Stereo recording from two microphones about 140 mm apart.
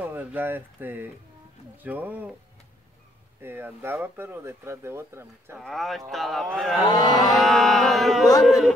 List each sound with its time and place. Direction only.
0.0 s speech: 10° right (ahead or behind)
3.4 s speech: 15° right (ahead or behind)
5.6 s speech: centre (ahead or behind)
6.9 s cattle: 30° left (ahead or behind)
7.2 s speech: centre (ahead or behind)